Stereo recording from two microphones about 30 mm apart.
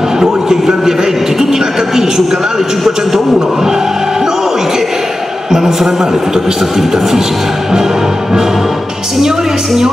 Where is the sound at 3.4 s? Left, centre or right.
Centre.